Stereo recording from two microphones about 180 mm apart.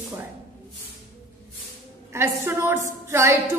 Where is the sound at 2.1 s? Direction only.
15° right (ahead or behind).